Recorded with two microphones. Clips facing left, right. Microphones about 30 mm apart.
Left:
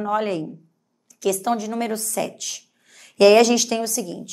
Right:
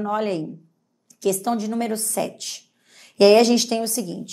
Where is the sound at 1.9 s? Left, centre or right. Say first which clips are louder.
Even; right.